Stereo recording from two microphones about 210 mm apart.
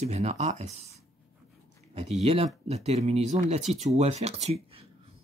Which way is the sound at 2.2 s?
30° right (ahead or behind).